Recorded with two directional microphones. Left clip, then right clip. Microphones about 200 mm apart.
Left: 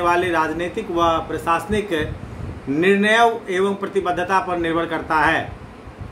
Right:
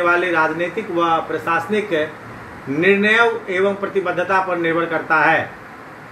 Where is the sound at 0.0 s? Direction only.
30° left (ahead or behind).